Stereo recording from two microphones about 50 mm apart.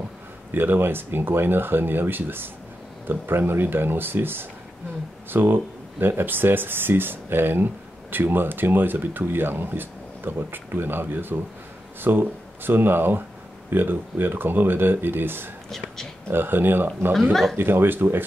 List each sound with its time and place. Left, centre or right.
0.6 s speech: right
17.1 s speech: centre
17.6 s speech: right